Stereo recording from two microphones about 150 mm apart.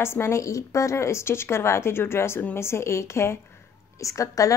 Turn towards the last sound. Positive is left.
turn(degrees=20)  # may be behind; listen again after turning